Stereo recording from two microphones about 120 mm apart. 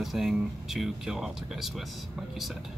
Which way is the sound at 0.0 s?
Centre (ahead or behind).